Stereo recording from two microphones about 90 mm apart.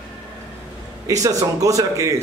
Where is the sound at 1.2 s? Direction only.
40° right (ahead or behind).